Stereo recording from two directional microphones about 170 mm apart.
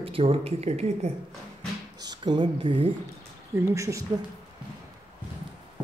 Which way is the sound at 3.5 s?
15° right (ahead or behind).